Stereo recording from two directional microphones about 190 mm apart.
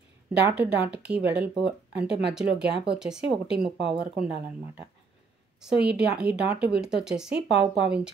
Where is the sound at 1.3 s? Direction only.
60° right (ahead or behind).